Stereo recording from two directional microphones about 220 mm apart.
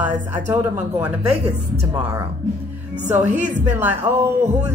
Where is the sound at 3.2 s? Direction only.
30° right (ahead or behind).